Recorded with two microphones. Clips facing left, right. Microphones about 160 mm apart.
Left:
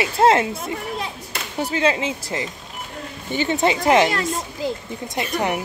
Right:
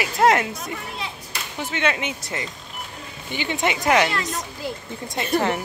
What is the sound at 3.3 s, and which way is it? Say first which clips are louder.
Speech: left 5 dB; 40° left (ahead or behind).